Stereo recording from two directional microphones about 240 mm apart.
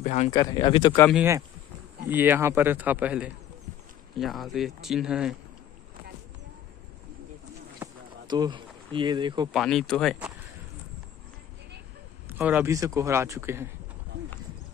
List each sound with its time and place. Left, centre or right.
0.0 s speech: left
0.3 s speech: centre
1.1 s a man's voice: centre
7.8 s a sound: centre
9.5 s speech: centre
12.3 s a man's voice: centre